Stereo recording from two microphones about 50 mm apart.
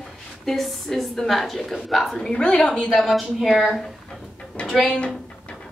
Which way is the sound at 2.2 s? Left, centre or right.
Centre.